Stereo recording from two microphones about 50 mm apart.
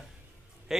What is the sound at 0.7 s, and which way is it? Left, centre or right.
Speech, centre.